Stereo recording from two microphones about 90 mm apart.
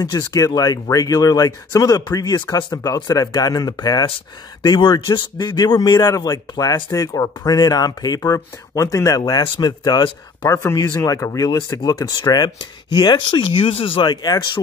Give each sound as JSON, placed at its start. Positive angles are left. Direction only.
{"t": 0.0, "sound": "speech", "side_deg": 45}
{"t": 4.6, "sound": "speech", "side_deg": 55}
{"t": 5.9, "sound": "speech", "side_deg": 40}
{"t": 10.4, "sound": "speech", "side_deg": 30}